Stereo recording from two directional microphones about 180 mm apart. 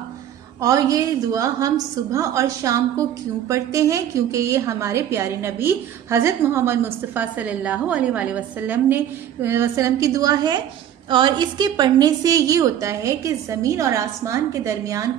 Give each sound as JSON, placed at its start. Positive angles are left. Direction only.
{"t": 0.6, "sound": "a woman's voice", "side_deg": -20}